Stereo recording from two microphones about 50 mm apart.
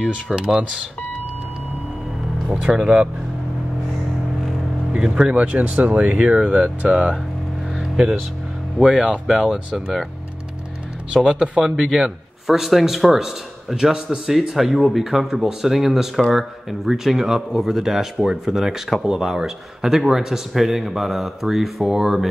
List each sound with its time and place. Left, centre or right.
0.1 s speech: centre
2.5 s speech: centre
4.9 s speech: centre
6.3 s speech: centre
11.1 s speech: centre
11.6 s a man's voice: centre